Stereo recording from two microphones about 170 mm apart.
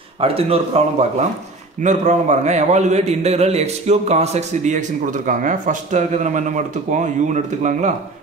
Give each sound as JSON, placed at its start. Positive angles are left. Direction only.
{"t": 0.2, "sound": "a man's voice", "side_deg": -35}